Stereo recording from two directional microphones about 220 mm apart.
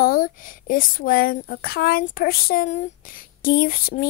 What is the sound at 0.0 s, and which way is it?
A woman's voice, 40° left (ahead or behind).